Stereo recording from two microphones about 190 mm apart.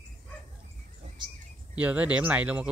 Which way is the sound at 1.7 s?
10° right (ahead or behind).